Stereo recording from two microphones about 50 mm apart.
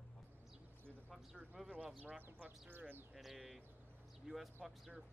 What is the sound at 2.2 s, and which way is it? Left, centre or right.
Speech, right.